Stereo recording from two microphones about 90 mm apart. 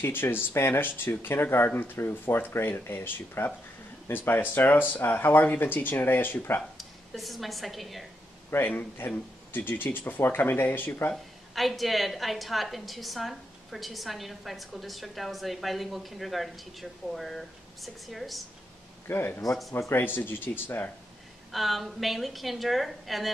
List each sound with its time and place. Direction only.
0.0 s speech: 25° left (ahead or behind)
6.8 s a woman's voice: centre (ahead or behind)
8.5 s speech: 25° left (ahead or behind)
11.5 s a woman's voice: centre (ahead or behind)
19.0 s speech: 25° left (ahead or behind)
21.5 s a woman's voice: centre (ahead or behind)